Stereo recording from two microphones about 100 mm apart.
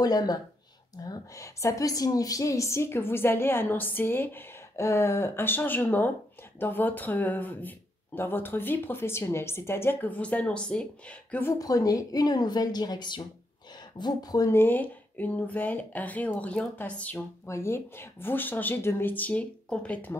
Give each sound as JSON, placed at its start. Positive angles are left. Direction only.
{"t": 0.0, "sound": "a woman's voice", "side_deg": 40}
{"t": 11.5, "sound": "speech", "side_deg": 40}
{"t": 14.5, "sound": "speech", "side_deg": 20}
{"t": 17.5, "sound": "a woman's voice", "side_deg": 25}